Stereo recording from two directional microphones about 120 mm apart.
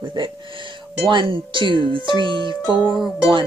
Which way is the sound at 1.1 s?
45° right (ahead or behind).